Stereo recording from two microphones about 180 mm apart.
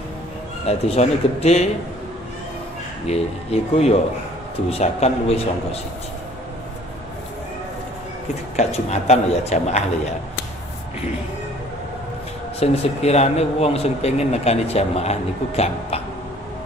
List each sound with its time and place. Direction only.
0.7 s speech: 35° left (ahead or behind)
3.1 s speech: 35° left (ahead or behind)
8.5 s speech: 35° left (ahead or behind)
12.5 s speech: 35° left (ahead or behind)